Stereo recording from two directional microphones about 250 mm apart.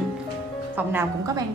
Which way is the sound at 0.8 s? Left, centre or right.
Centre.